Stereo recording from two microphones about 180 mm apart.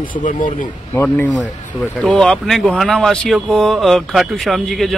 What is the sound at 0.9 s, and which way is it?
Speech, 10° left (ahead or behind).